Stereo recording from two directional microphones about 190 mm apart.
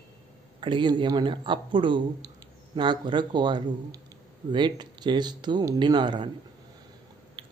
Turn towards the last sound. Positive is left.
turn(degrees=-25)  # may be behind; listen again after turning